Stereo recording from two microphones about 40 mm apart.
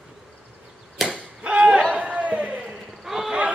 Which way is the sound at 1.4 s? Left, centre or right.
Right.